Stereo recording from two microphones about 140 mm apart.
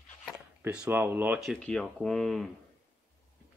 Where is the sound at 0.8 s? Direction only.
15° right (ahead or behind).